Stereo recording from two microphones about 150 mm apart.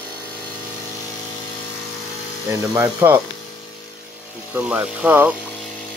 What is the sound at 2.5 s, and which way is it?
Speech, 15° right (ahead or behind).